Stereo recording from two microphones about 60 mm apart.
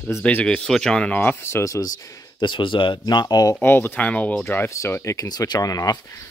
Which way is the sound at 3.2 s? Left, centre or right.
Left.